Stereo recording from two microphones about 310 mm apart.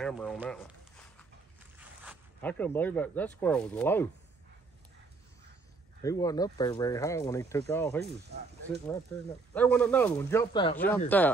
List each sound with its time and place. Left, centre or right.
0.0 s speech: centre
1.8 s speech: centre
6.0 s speech: centre
8.0 s speech: right
9.5 s speech: centre